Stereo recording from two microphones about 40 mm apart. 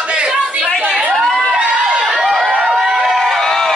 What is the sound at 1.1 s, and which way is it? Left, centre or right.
Crowd, centre.